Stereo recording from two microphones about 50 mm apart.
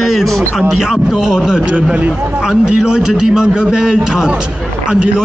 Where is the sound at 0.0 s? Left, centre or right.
Centre.